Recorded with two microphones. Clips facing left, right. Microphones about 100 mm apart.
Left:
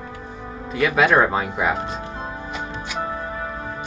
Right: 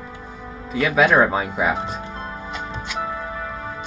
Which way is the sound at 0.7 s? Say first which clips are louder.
Even; centre (ahead or behind).